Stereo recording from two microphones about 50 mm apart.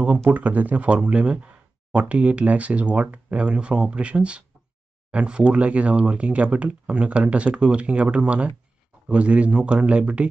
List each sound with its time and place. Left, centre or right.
0.3 s speech: right